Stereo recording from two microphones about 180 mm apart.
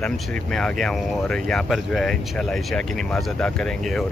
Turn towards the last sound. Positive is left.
turn(degrees=0)  # may be behind; listen again after turning